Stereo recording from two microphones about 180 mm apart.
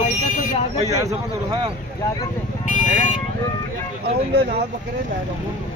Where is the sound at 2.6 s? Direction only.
45° left (ahead or behind).